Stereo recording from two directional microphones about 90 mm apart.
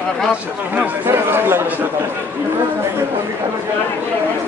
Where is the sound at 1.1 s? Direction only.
25° right (ahead or behind).